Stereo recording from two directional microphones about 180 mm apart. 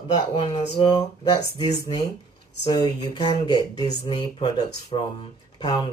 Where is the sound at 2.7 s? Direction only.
25° left (ahead or behind).